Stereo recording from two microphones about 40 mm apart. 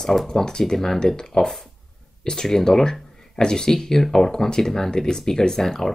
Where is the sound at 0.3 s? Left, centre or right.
Centre.